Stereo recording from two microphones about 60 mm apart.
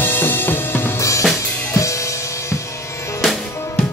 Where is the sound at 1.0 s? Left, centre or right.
Left.